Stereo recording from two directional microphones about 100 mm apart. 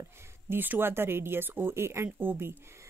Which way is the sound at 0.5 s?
20° right (ahead or behind).